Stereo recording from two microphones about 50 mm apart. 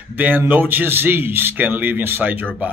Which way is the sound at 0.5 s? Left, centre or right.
Right.